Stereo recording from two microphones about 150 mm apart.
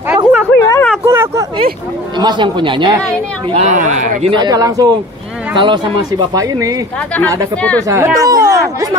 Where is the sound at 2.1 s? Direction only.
30° right (ahead or behind).